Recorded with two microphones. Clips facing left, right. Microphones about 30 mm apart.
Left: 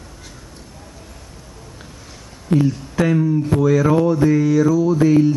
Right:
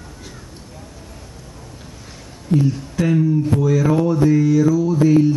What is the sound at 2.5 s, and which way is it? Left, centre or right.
Speech, left.